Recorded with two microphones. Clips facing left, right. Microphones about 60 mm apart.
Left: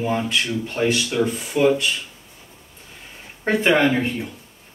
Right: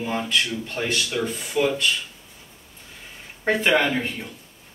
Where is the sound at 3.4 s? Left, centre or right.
Centre.